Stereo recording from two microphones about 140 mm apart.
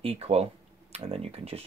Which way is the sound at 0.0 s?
45° right (ahead or behind).